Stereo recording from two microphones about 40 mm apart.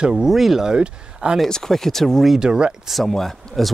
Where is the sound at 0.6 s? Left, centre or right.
Right.